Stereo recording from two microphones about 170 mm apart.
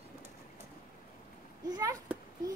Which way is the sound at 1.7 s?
20° right (ahead or behind).